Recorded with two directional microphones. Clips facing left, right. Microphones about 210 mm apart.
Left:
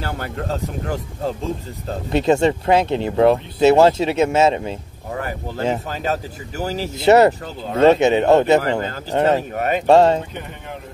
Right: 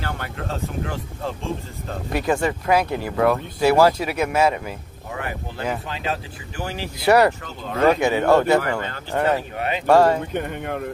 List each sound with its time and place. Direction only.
0.0 s speech: 40° left (ahead or behind)
5.1 s boat: 40° left (ahead or behind)
5.9 s speech: 40° left (ahead or behind)
7.0 s speech: 25° left (ahead or behind)
9.6 s speech: 45° left (ahead or behind)
9.8 s speech: 25° left (ahead or behind)